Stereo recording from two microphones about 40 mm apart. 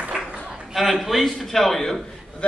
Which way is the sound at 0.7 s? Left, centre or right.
Centre.